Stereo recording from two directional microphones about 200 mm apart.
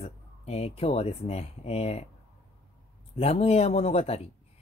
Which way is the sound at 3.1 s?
30° left (ahead or behind).